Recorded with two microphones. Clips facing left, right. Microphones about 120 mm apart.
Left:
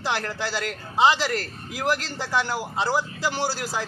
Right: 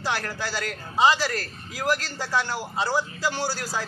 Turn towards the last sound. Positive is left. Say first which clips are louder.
# left 2 dB
turn(degrees=15)  # may be behind; listen again after turning